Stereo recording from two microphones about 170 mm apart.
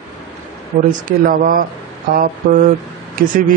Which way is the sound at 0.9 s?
55° right (ahead or behind).